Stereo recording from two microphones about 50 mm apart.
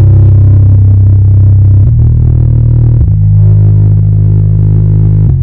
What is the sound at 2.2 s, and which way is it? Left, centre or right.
Music, right.